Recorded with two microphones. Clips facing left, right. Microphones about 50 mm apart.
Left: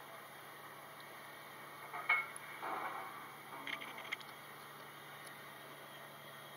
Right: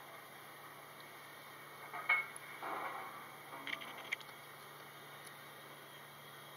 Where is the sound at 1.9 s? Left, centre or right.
Centre.